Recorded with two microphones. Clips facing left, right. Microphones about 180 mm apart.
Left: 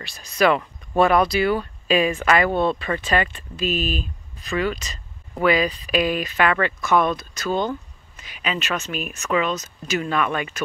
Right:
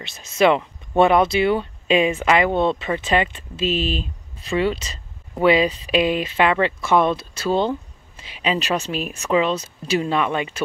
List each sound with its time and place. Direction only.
0.0 s speech: 20° right (ahead or behind)